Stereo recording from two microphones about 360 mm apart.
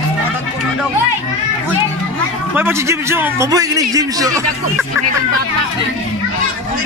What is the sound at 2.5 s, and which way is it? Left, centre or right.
A man's voice, centre.